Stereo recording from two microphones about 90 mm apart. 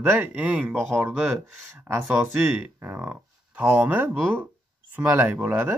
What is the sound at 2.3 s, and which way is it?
Speech, 20° right (ahead or behind).